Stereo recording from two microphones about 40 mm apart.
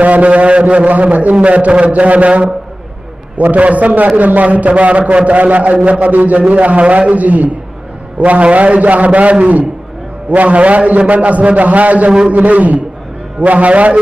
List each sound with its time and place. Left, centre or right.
0.0 s a man's voice: right